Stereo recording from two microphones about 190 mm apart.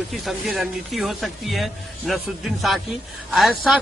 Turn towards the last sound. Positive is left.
turn(degrees=-5)  # may be behind; listen again after turning